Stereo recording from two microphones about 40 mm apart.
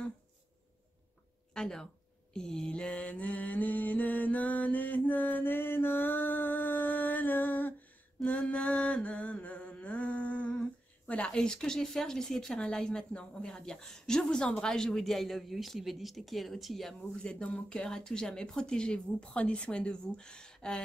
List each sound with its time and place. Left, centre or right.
1.5 s speech: centre
3.1 s music: left
8.2 s a sound: left
10.6 s humming: left
11.3 s a woman's voice: centre
17.2 s speech: left